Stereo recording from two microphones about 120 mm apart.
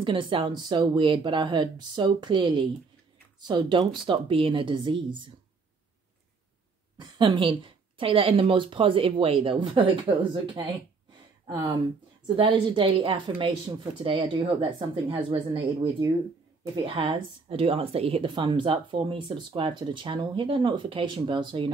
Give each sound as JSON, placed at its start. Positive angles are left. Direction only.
{"t": 0.0, "sound": "a woman's voice", "side_deg": -45}
{"t": 7.0, "sound": "a woman's voice", "side_deg": -40}